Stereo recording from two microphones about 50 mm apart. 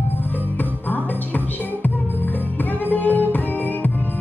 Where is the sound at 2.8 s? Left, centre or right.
Left.